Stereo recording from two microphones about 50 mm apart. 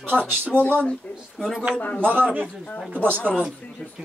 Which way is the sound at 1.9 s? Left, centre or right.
Left.